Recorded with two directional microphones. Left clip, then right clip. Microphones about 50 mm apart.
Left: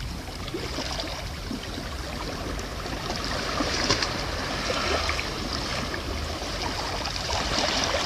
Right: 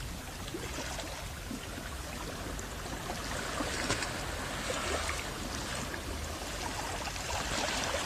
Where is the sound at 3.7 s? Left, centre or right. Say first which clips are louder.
Left 11 dB; right.